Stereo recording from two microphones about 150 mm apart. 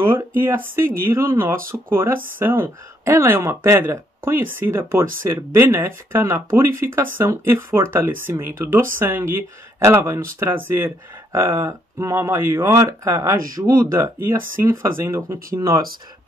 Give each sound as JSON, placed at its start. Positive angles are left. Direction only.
{"t": 0.8, "sound": "speech", "side_deg": -20}